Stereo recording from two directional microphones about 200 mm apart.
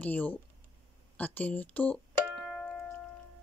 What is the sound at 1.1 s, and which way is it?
Music, 10° left (ahead or behind).